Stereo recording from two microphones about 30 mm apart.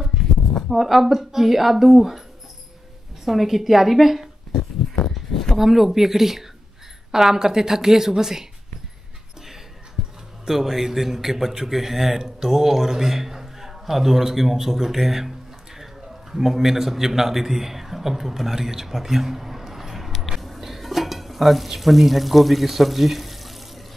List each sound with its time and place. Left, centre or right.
0.1 s a sound: centre
0.7 s a man's voice: centre
3.3 s speech: centre
5.6 s a man's voice: centre
10.0 s music: centre
10.4 s a man's voice: centre
15.8 s a sound: centre
21.6 s speech: centre